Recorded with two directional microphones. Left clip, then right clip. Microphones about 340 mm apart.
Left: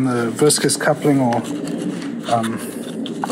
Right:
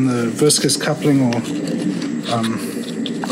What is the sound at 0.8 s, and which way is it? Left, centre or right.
A man's voice, centre.